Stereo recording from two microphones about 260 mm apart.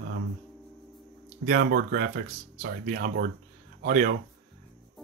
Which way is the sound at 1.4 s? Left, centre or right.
Right.